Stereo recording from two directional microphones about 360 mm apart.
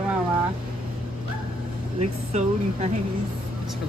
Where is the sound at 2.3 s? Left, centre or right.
Centre.